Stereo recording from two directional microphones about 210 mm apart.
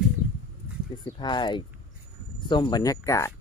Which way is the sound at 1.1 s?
20° left (ahead or behind).